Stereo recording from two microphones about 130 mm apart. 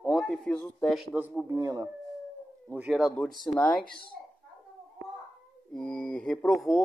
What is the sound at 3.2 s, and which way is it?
Speech, centre (ahead or behind).